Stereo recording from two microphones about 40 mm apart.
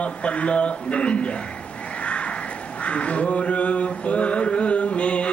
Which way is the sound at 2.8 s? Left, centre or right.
Left.